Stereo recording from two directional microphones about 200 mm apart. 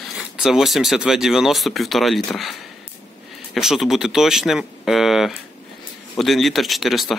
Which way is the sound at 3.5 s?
Centre (ahead or behind).